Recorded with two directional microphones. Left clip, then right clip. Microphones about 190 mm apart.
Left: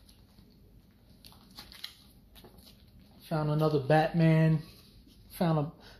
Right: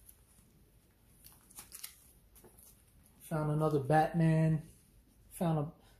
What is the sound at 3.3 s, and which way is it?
Speech, 5° left (ahead or behind).